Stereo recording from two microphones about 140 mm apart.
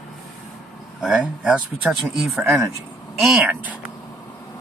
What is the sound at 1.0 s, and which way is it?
Speech, 5° right (ahead or behind).